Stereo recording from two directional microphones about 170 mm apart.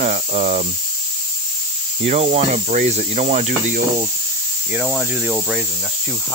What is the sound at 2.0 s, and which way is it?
Speech, 40° right (ahead or behind).